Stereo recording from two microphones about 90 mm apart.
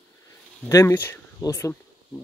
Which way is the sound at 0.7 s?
30° left (ahead or behind).